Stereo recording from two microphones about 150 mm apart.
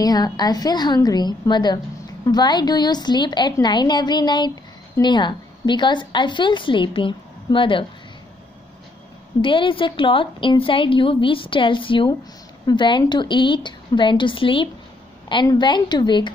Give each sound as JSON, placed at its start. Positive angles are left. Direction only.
{"t": 0.0, "sound": "a woman's voice", "side_deg": 25}
{"t": 9.4, "sound": "a woman's voice", "side_deg": 35}